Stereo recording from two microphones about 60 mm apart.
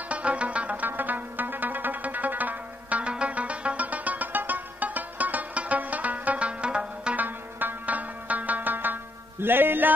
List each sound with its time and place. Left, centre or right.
0.1 s music: right
7.2 s music: right